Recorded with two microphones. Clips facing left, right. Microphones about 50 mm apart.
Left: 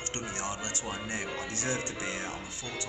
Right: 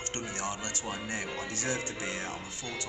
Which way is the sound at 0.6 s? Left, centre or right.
Left.